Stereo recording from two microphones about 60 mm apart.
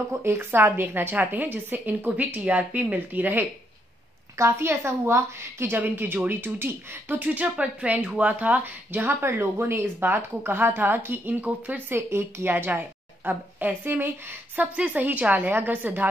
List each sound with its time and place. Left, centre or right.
0.3 s a woman's voice: right
1.1 s a woman's voice: right
4.4 s a woman's voice: right
5.8 s a woman's voice: right
9.2 s a woman's voice: right
11.9 s a woman's voice: right